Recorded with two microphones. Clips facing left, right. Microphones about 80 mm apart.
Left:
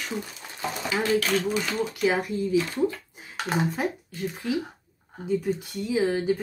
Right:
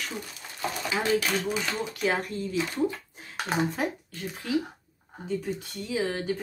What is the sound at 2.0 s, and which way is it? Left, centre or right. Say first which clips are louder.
Speech: left 3 dB; centre.